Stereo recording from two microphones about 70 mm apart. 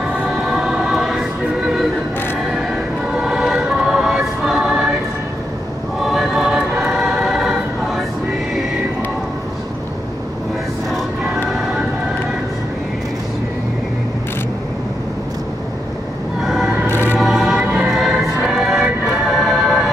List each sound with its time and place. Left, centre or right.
0.0 s music: centre
2.5 s choir: centre
6.0 s choir: centre
16.8 s music: left
17.2 s music: centre